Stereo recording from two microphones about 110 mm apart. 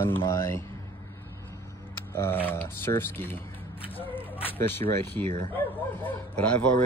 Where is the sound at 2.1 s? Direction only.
20° left (ahead or behind).